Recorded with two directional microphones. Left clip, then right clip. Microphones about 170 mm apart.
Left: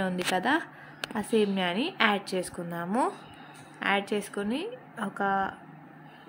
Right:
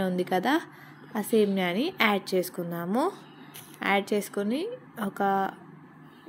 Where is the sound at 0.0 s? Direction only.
10° right (ahead or behind).